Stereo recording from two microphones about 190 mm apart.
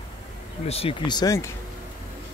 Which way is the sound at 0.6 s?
30° left (ahead or behind).